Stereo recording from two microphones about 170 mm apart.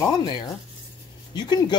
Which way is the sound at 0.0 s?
25° left (ahead or behind).